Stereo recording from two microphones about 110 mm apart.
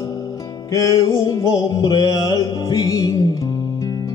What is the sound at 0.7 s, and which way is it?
Music, 30° left (ahead or behind).